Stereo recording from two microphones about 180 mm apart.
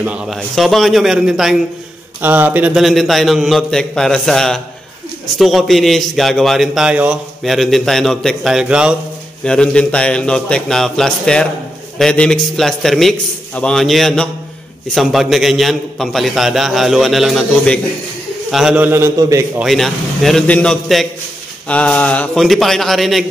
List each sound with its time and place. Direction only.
0.0 s a man's voice: 5° right (ahead or behind)
9.4 s a man's voice: 5° left (ahead or behind); by 19.6 s 15° right (ahead or behind)
19.6 s a man's voice: centre (ahead or behind)